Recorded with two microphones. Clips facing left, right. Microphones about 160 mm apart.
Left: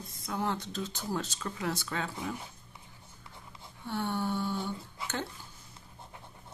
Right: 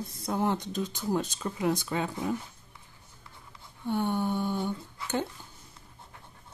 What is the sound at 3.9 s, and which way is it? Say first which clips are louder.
Speech: right 4 dB; 15° right (ahead or behind).